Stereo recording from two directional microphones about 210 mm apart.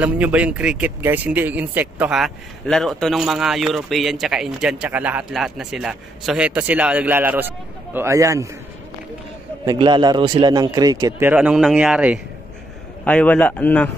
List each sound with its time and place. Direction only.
0.0 s a man's voice: 5° right (ahead or behind)
9.7 s a man's voice: 20° right (ahead or behind); by 12.2 s 5° right (ahead or behind)
13.0 s a man's voice: 5° left (ahead or behind)